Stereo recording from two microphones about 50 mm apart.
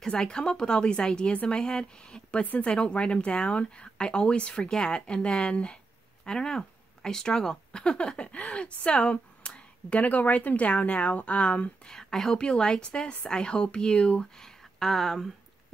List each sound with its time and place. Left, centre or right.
0.0 s speech: centre
2.4 s a woman's voice: left
2.7 s speech: left
11.9 s speech: centre